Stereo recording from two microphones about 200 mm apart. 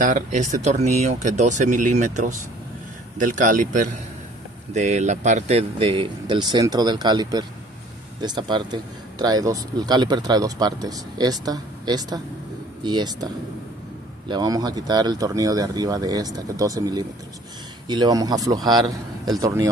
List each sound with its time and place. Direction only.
0.0 s speech: 40° right (ahead or behind); by 13.3 s 20° right (ahead or behind)
14.3 s speech: 20° right (ahead or behind)